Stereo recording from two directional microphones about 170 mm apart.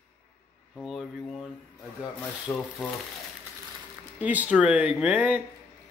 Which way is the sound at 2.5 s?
15° left (ahead or behind).